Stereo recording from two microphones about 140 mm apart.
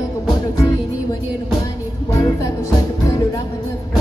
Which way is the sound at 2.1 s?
25° left (ahead or behind).